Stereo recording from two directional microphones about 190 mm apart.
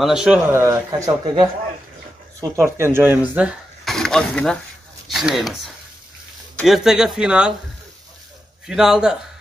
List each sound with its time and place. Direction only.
0.0 s speech: 5° right (ahead or behind)
0.5 s speech: 15° right (ahead or behind)
2.6 s speech: 10° right (ahead or behind)
6.6 s speech: centre (ahead or behind)
8.6 s speech: 5° right (ahead or behind)